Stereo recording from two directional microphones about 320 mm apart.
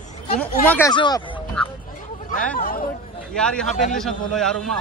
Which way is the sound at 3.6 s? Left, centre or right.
Left.